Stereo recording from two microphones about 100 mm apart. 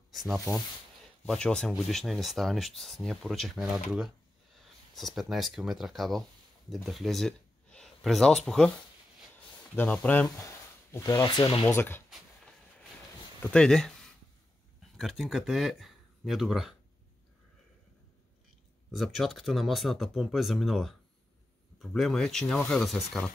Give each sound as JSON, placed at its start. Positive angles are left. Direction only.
{"t": 0.1, "sound": "speech", "side_deg": 0}
{"t": 1.2, "sound": "speech", "side_deg": 10}
{"t": 9.8, "sound": "speech", "side_deg": 15}
{"t": 10.3, "sound": "a sound", "side_deg": 25}
{"t": 11.6, "sound": "speech", "side_deg": 25}
{"t": 13.4, "sound": "speech", "side_deg": 10}
{"t": 18.9, "sound": "speech", "side_deg": 0}